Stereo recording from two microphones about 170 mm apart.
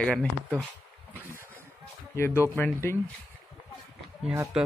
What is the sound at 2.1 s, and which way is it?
Speech, 15° left (ahead or behind).